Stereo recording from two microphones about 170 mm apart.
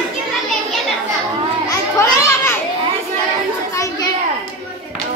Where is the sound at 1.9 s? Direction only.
15° left (ahead or behind).